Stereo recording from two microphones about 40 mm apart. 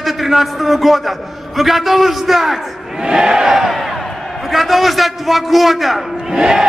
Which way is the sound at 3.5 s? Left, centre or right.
Centre.